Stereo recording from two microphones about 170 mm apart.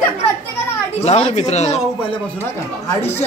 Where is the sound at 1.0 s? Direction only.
40° left (ahead or behind).